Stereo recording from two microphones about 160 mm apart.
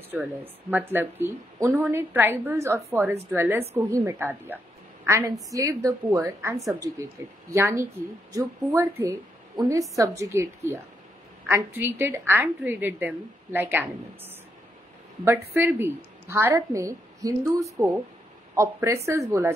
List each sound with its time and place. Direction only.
0.1 s a woman's voice: 10° right (ahead or behind)